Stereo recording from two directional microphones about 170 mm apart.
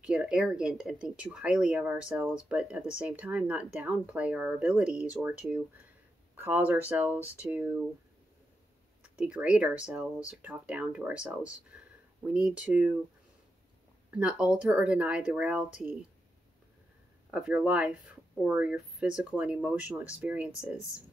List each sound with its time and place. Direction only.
0.0 s speech: 5° right (ahead or behind)
9.0 s speech: 5° right (ahead or behind)
11.7 s a sound: 5° right (ahead or behind)
12.2 s speech: 5° right (ahead or behind)
14.1 s speech: 5° right (ahead or behind)
17.3 s speech: 5° right (ahead or behind)